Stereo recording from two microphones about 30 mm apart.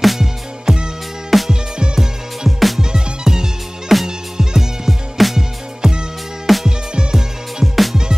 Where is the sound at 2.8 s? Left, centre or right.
Right.